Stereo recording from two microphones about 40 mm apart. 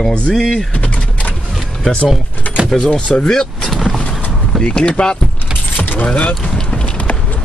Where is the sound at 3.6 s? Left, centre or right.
Centre.